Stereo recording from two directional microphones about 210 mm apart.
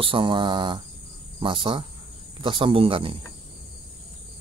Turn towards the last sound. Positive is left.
turn(degrees=-25)  # may be behind; listen again after turning